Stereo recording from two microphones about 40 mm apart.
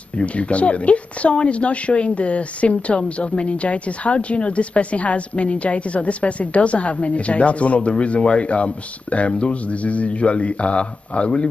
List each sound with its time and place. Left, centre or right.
0.2 s speech: left